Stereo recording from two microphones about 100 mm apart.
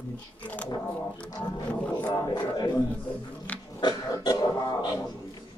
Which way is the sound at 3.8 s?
45° left (ahead or behind).